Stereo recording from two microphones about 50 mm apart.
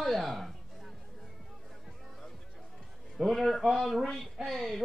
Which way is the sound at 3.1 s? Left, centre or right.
Centre.